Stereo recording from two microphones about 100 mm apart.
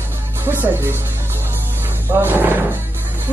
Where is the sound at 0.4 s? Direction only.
20° right (ahead or behind).